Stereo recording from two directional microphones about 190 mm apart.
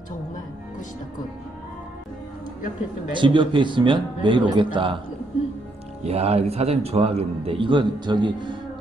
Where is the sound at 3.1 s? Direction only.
25° right (ahead or behind).